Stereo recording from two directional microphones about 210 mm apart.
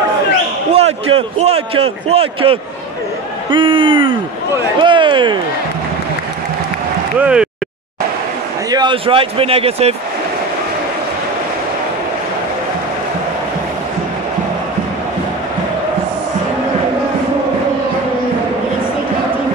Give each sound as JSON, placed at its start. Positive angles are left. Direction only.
{"t": 0.7, "sound": "a man's voice", "side_deg": -30}
{"t": 7.2, "sound": "speech", "side_deg": -5}
{"t": 8.6, "sound": "a man's voice", "side_deg": -20}